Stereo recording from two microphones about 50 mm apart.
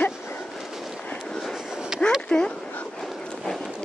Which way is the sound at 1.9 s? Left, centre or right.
Centre.